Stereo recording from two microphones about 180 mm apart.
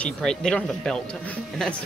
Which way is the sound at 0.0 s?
5° left (ahead or behind).